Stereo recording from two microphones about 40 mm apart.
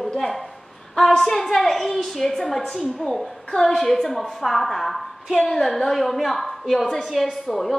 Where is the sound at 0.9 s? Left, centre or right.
Centre.